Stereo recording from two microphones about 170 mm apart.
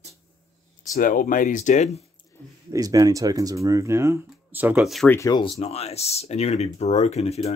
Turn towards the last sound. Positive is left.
turn(degrees=40)  # may be behind; listen again after turning